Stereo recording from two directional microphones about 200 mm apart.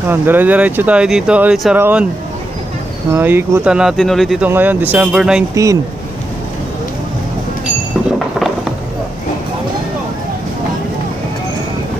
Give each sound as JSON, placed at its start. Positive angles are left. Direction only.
{"t": 0.1, "sound": "speech", "side_deg": -10}
{"t": 3.1, "sound": "speech", "side_deg": -10}
{"t": 5.5, "sound": "speech", "side_deg": -15}